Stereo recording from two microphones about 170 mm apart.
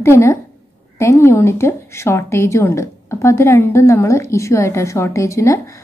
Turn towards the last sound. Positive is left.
turn(degrees=15)  # may be behind; listen again after turning